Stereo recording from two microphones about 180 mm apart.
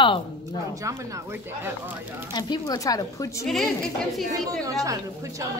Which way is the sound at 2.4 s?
25° left (ahead or behind).